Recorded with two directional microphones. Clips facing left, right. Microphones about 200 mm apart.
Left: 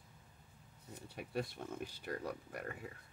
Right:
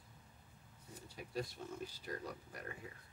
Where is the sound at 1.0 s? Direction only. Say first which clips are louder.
Left 3 dB; 60° left (ahead or behind).